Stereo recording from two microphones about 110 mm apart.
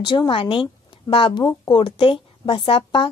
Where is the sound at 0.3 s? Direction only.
50° left (ahead or behind).